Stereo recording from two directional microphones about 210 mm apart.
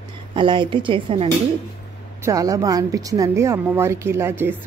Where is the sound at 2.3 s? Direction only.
15° right (ahead or behind).